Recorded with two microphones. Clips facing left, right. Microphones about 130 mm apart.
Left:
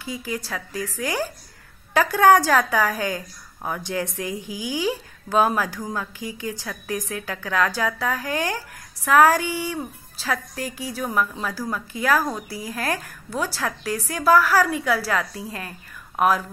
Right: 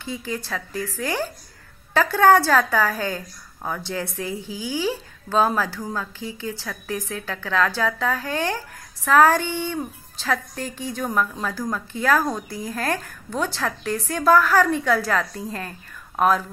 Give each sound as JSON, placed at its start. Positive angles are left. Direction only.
{"t": 0.0, "sound": "a woman's voice", "side_deg": 10}